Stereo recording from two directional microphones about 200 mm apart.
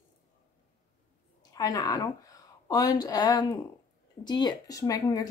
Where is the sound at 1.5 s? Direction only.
20° left (ahead or behind).